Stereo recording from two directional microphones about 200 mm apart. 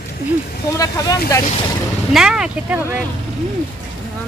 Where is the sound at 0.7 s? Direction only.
15° left (ahead or behind).